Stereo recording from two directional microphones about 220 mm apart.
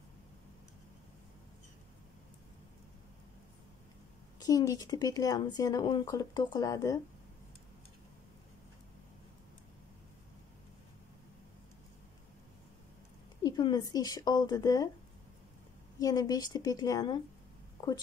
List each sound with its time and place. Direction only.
4.4 s speech: 15° left (ahead or behind)
13.4 s a woman's voice: 20° left (ahead or behind)
16.0 s speech: 15° left (ahead or behind)